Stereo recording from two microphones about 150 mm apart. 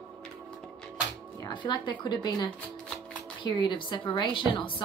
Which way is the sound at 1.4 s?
30° left (ahead or behind).